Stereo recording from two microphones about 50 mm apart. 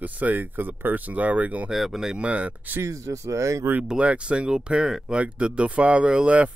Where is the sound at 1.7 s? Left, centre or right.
Centre.